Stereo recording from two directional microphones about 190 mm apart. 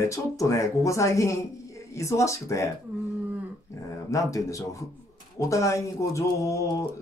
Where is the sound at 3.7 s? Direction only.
15° left (ahead or behind).